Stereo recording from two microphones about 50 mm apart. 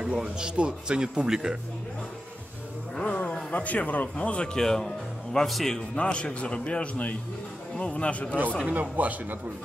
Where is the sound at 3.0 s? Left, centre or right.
Left.